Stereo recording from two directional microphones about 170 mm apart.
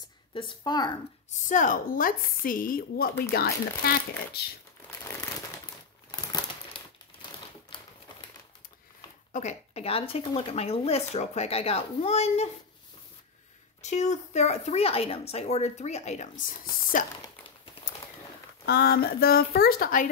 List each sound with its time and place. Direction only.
0.3 s a woman's voice: 30° left (ahead or behind)
1.5 s a woman's voice: 50° left (ahead or behind)
6.3 s crumpling: 25° left (ahead or behind)
9.3 s speech: 45° left (ahead or behind)
13.8 s speech: 45° left (ahead or behind)
18.7 s a woman's voice: 70° left (ahead or behind)